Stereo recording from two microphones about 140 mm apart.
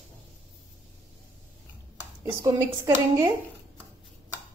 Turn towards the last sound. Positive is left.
turn(degrees=-25)  # may be behind; listen again after turning